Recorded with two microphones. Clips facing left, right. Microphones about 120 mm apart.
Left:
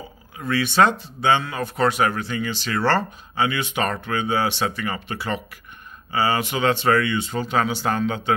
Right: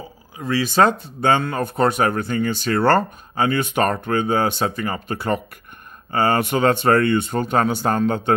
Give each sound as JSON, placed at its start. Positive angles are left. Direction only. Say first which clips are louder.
{"t": 0.5, "sound": "speech", "louder": "right 2 dB", "side_deg": -35}